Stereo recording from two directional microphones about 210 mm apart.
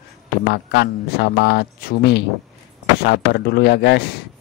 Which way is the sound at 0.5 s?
50° left (ahead or behind).